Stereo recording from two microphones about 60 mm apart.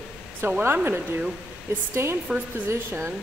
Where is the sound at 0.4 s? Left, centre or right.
Right.